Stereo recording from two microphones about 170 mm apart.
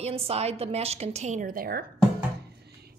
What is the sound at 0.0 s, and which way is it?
A woman's voice, 35° right (ahead or behind).